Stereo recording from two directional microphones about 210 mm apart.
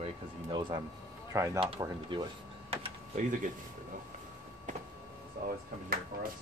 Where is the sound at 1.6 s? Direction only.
25° right (ahead or behind).